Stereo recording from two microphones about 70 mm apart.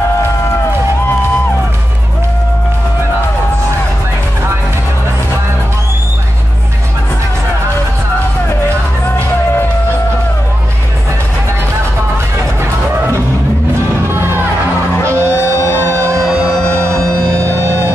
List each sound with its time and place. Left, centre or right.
14.1 s music: right